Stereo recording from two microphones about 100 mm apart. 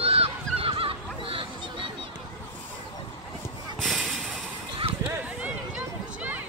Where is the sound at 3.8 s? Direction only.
Centre (ahead or behind).